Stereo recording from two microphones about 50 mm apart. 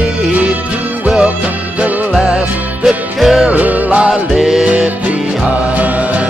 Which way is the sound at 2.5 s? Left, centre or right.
Right.